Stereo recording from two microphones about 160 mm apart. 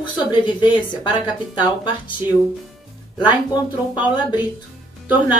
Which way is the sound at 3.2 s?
25° left (ahead or behind).